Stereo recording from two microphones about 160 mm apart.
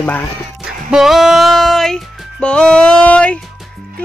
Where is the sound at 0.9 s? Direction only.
Centre (ahead or behind).